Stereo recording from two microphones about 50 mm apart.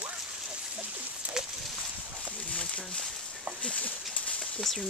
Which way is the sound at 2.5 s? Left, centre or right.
Left.